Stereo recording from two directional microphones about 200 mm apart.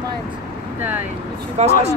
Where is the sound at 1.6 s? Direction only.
35° right (ahead or behind).